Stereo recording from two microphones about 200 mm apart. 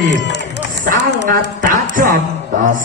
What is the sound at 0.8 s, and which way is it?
A man's voice, 45° right (ahead or behind).